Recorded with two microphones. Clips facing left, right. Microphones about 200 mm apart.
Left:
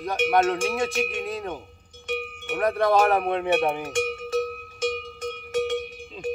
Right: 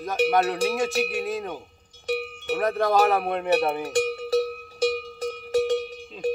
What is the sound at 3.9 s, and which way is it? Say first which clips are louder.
Cowbell: right 3 dB; 35° right (ahead or behind).